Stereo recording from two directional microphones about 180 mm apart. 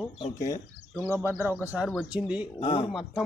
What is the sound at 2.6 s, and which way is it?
Speech, 30° left (ahead or behind).